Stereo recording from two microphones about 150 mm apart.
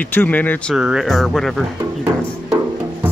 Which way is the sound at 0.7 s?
5° right (ahead or behind).